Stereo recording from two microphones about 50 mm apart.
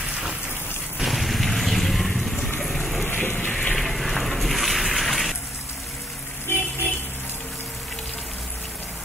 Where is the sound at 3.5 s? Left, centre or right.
Centre.